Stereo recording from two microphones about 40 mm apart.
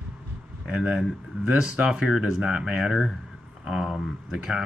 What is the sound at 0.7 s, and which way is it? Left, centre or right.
Speech, right.